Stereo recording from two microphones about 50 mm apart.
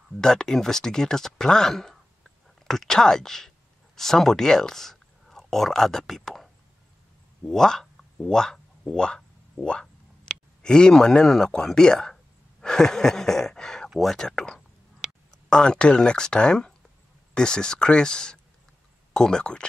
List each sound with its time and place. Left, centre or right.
0.2 s speech: centre
10.6 s speech: centre
13.8 s speech: centre
14.2 s speech: centre